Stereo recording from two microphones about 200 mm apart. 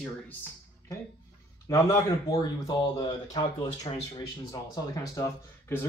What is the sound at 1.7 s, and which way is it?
Speech, 15° left (ahead or behind).